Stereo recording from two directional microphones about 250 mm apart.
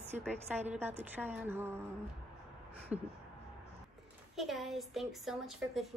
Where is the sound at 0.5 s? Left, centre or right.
Right.